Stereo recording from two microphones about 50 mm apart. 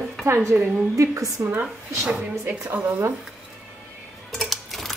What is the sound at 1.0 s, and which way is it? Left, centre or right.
Speech, right.